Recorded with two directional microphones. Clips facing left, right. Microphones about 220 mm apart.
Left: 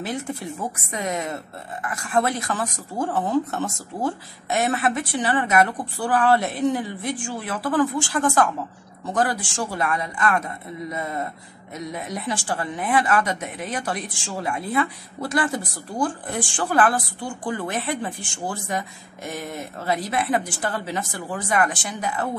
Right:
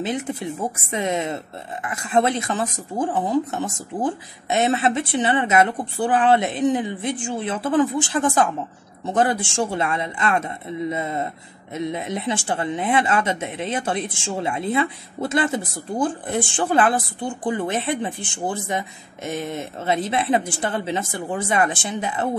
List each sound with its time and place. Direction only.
0.0 s speech: 20° right (ahead or behind)